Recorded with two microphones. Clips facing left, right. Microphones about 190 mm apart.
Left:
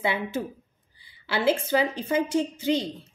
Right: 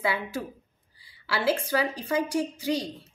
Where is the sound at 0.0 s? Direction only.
20° left (ahead or behind).